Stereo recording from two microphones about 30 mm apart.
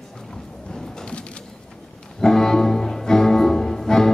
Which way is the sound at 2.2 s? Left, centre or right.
Centre.